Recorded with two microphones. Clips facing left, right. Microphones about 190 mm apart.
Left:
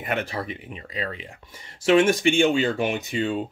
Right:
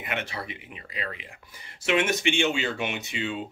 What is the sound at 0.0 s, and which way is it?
Speech, 40° left (ahead or behind).